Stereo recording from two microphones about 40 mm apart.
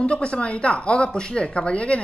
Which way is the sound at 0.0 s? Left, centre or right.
Left.